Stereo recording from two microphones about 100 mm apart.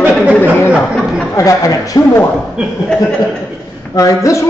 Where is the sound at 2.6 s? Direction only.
10° right (ahead or behind).